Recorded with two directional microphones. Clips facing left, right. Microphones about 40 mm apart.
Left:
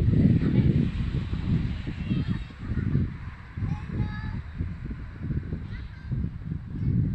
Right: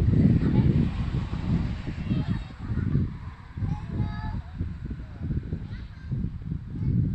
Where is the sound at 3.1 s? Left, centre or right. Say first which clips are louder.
Left 1 dB; left.